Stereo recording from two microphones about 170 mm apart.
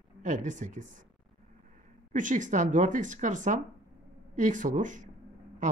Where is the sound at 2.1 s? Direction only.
50° right (ahead or behind).